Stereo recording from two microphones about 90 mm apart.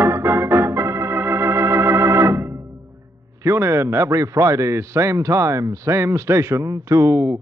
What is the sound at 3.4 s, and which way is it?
A man's voice, 35° right (ahead or behind).